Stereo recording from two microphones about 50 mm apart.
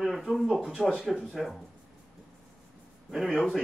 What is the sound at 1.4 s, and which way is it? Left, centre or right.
Speech, centre.